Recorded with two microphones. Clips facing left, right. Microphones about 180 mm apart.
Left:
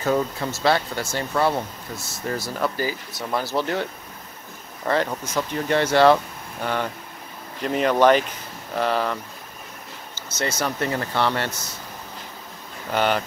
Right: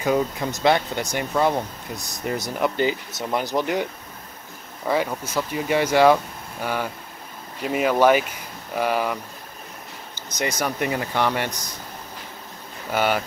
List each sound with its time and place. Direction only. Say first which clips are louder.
0.0 s speech: right 1 dB; 15° right (ahead or behind)
12.9 s speech: even; 10° right (ahead or behind)